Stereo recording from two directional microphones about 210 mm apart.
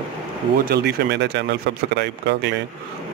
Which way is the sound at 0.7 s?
50° right (ahead or behind).